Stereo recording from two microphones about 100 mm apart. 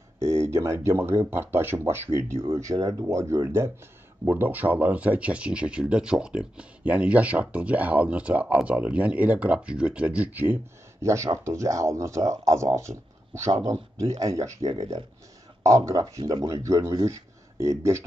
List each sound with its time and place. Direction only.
0.2 s speech: 30° right (ahead or behind)
4.2 s speech: 20° right (ahead or behind)